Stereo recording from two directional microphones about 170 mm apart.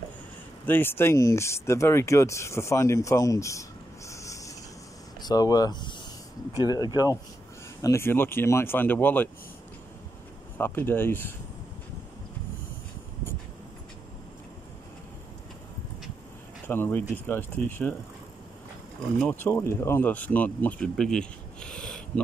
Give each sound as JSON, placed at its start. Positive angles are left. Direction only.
{"t": 0.7, "sound": "speech", "side_deg": 10}
{"t": 4.1, "sound": "a sound", "side_deg": 20}
{"t": 5.2, "sound": "speech", "side_deg": 20}
{"t": 10.6, "sound": "speech", "side_deg": 10}
{"t": 16.6, "sound": "speech", "side_deg": 10}
{"t": 19.1, "sound": "speech", "side_deg": 10}